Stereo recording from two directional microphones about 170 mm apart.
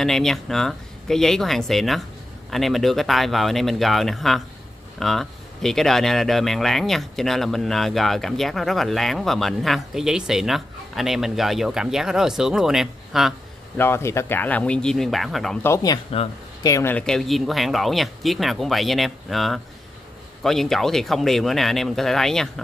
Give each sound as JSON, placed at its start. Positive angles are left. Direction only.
{"t": 0.0, "sound": "speech", "side_deg": 0}
{"t": 13.7, "sound": "speech", "side_deg": 15}
{"t": 15.6, "sound": "speech", "side_deg": 20}